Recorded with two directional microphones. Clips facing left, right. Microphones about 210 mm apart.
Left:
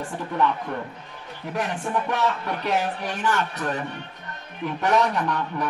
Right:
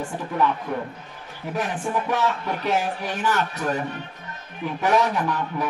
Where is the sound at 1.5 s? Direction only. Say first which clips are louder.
Right 1 dB; centre (ahead or behind).